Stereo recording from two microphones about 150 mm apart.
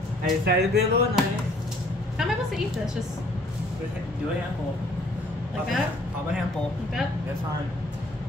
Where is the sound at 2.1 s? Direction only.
Centre (ahead or behind).